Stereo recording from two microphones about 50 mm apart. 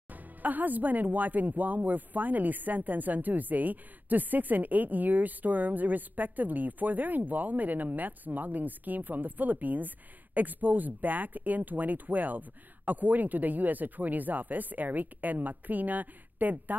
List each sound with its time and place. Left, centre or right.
0.1 s speech: right